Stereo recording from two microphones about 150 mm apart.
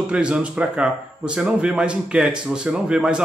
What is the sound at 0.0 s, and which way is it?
A man's voice, 5° right (ahead or behind).